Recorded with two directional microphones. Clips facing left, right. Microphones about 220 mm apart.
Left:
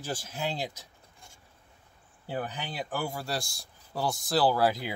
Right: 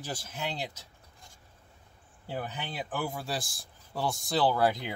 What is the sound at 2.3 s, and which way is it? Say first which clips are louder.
Speech: left 2 dB; centre (ahead or behind).